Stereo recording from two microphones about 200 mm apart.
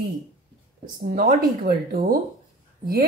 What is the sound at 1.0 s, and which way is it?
Speech, 45° right (ahead or behind).